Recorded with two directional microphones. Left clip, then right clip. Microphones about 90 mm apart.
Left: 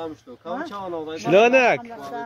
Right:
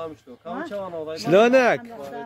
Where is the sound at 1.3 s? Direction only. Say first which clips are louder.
Left 1 dB; 55° right (ahead or behind).